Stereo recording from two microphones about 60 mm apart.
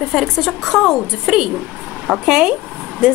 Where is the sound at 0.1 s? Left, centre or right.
Centre.